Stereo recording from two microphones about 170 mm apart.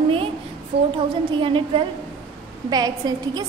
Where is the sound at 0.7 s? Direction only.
75° right (ahead or behind).